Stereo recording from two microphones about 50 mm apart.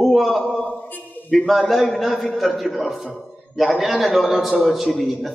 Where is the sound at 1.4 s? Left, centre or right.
Centre.